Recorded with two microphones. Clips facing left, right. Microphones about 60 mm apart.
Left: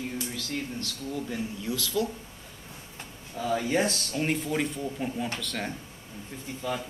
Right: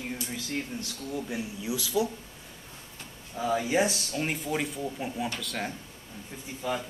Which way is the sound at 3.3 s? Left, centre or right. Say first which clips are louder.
Even; centre.